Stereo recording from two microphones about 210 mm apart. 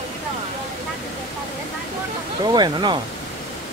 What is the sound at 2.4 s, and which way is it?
Speech, 20° right (ahead or behind).